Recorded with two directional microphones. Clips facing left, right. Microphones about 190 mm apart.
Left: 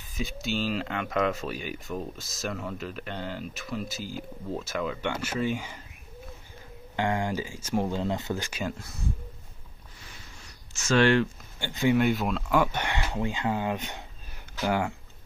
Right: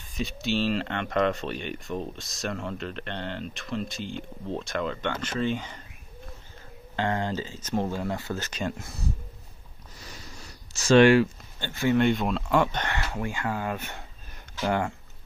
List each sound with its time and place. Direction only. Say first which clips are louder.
0.1 s speech: right 3 dB; centre (ahead or behind)
7.0 s speech: even; 15° left (ahead or behind)
9.9 s a sound: right 6 dB; 40° right (ahead or behind)
11.0 s speech: right 5 dB; 10° right (ahead or behind)
11.6 s speech: even; 15° left (ahead or behind)
12.0 s speech: right 2 dB; 5° left (ahead or behind)
12.8 s speech: left 1 dB; 15° left (ahead or behind)